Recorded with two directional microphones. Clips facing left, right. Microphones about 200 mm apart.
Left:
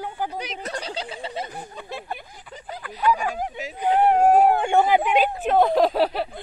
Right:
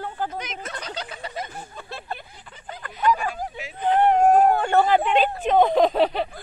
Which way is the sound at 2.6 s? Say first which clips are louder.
Left 1 dB; 5° left (ahead or behind).